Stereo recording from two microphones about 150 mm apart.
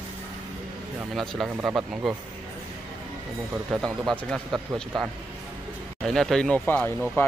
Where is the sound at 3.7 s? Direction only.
Centre (ahead or behind).